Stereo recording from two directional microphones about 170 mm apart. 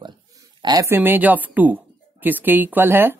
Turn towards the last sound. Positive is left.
turn(degrees=-10)  # may be behind; listen again after turning